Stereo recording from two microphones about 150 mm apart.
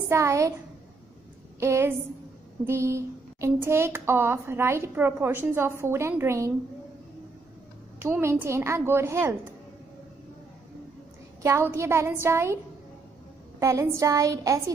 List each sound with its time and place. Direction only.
0.1 s a woman's voice: 20° right (ahead or behind)
1.6 s speech: 15° right (ahead or behind)
8.0 s speech: 15° right (ahead or behind)
11.4 s speech: 15° right (ahead or behind)
13.6 s a woman's voice: 20° right (ahead or behind)